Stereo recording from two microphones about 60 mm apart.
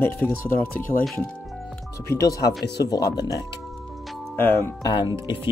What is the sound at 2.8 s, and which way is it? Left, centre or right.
Speech, left.